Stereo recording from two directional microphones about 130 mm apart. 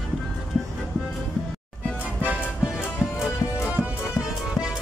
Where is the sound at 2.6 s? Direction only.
5° right (ahead or behind).